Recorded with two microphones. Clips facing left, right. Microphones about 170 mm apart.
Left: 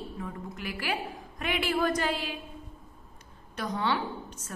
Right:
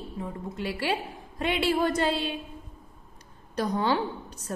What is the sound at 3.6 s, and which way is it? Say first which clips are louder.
Speech: right 4 dB; 35° right (ahead or behind).